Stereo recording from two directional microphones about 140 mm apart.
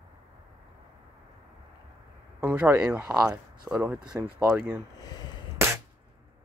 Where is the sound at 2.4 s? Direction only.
10° right (ahead or behind).